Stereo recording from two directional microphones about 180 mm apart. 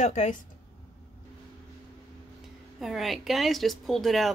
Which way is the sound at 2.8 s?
Centre (ahead or behind).